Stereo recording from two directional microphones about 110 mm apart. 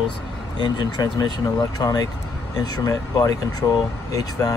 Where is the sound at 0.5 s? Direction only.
40° left (ahead or behind).